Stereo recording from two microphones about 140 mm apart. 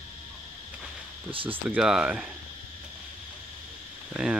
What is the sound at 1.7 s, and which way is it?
Speech, 5° right (ahead or behind).